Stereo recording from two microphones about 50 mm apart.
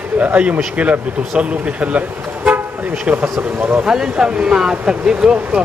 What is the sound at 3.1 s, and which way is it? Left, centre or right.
Speech, right.